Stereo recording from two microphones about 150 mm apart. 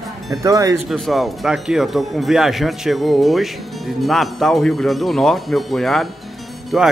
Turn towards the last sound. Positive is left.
turn(degrees=-5)  # may be behind; listen again after turning